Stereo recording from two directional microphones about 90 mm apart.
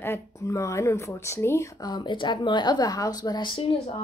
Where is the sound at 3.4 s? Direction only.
75° left (ahead or behind).